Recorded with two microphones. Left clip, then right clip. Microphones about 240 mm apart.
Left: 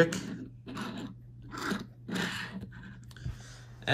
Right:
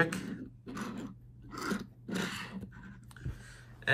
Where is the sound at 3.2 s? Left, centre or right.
Right.